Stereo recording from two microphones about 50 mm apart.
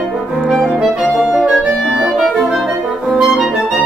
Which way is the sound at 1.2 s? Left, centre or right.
Centre.